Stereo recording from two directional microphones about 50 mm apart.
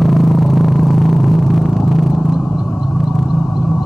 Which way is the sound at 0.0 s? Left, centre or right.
Centre.